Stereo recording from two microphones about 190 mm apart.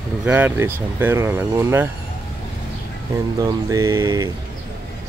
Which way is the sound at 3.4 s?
15° right (ahead or behind).